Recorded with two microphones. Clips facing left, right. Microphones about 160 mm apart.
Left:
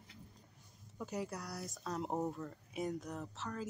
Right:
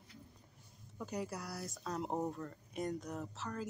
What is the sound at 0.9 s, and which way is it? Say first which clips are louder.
Speech: even; centre (ahead or behind).